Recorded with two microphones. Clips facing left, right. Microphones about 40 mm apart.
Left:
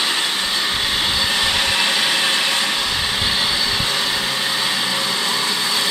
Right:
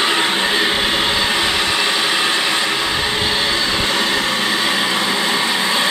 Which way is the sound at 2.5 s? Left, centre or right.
Centre.